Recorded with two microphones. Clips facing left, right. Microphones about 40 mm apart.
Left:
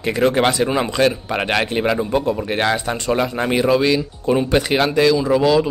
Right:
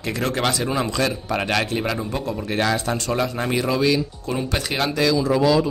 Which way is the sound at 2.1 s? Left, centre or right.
Left.